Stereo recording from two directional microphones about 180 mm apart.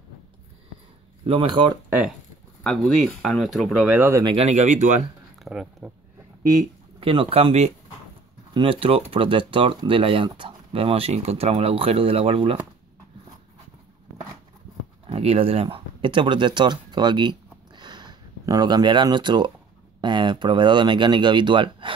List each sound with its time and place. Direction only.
1.2 s speech: 30° right (ahead or behind)
1.9 s speech: 5° right (ahead or behind)
3.9 s speech: 10° right (ahead or behind)
4.2 s speech: 25° right (ahead or behind)
4.5 s speech: 40° right (ahead or behind)
5.4 s a sound: centre (ahead or behind)
7.0 s speech: 30° right (ahead or behind)
15.0 s speech: 30° right (ahead or behind)